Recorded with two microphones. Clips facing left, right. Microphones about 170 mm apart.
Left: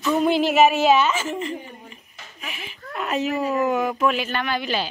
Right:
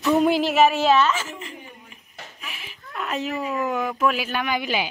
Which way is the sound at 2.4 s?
Centre (ahead or behind).